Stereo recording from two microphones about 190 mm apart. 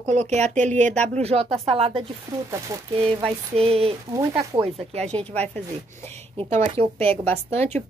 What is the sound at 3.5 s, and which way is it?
Speech, 30° right (ahead or behind).